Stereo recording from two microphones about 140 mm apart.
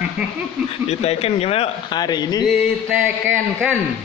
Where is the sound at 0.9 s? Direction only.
50° left (ahead or behind).